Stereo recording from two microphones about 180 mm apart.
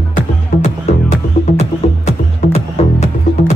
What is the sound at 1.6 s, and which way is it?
Music, 35° left (ahead or behind).